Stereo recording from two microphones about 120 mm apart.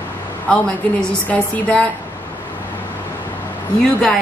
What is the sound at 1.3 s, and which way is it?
Speech, 10° left (ahead or behind).